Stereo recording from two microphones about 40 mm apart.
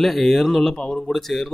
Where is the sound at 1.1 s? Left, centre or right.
Centre.